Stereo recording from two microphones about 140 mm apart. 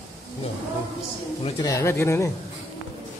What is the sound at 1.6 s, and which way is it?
Speech, 20° left (ahead or behind).